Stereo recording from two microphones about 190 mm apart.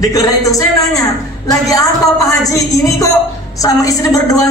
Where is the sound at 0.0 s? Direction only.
20° left (ahead or behind).